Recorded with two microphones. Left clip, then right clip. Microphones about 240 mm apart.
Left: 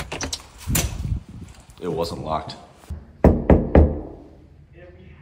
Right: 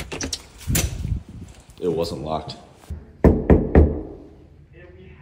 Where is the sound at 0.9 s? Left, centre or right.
Centre.